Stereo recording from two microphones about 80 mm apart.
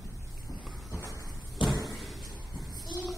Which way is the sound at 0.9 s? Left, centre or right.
Left.